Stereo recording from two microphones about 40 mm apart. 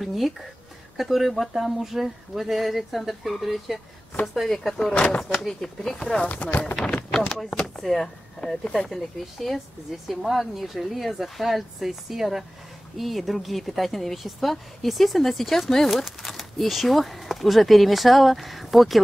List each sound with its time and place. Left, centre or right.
0.0 s speech: centre
4.9 s speech: left
5.2 s speech: centre
5.5 s speech: centre
6.2 s speech: left
7.1 s speech: centre
8.4 s speech: left
8.7 s speech: centre
16.0 s speech: centre